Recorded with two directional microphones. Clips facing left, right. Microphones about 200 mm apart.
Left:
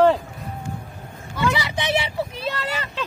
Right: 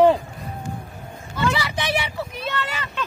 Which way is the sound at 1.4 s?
15° left (ahead or behind).